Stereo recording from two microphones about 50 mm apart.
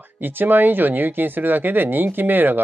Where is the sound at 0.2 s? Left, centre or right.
Right.